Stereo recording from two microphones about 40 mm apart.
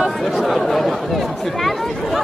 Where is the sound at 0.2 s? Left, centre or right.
Centre.